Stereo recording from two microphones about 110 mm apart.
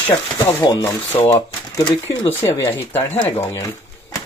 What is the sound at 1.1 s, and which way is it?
Speech, 35° left (ahead or behind).